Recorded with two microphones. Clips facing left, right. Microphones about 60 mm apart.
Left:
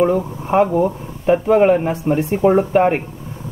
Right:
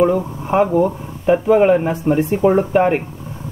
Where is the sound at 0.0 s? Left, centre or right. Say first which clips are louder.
Right 1 dB; centre.